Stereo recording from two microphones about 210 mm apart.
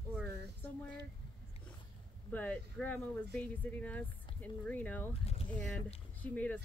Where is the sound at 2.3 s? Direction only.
5° left (ahead or behind).